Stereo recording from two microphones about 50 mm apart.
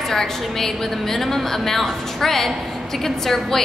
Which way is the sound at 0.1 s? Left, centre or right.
Centre.